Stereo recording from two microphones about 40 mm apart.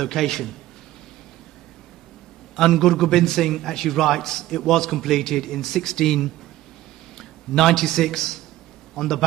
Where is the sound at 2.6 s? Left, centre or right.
Centre.